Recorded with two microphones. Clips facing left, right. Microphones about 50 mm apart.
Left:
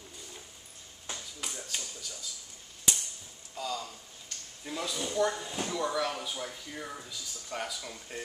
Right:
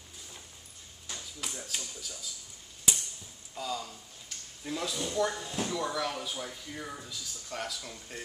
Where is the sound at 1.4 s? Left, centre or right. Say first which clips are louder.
Even; centre.